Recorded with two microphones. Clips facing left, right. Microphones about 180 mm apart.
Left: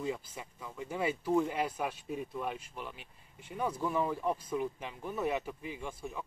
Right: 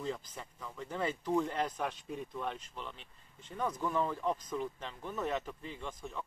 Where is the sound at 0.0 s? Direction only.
10° left (ahead or behind).